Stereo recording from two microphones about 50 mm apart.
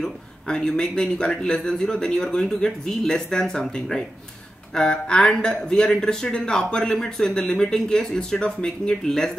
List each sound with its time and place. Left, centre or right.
0.0 s speech: centre
4.7 s speech: centre